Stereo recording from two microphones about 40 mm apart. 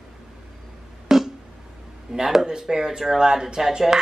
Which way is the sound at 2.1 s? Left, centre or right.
Centre.